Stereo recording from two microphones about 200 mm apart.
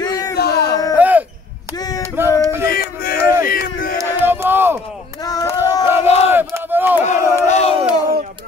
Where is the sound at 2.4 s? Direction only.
15° right (ahead or behind).